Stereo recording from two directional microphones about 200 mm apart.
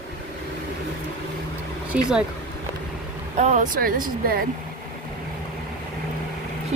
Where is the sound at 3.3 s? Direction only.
40° right (ahead or behind).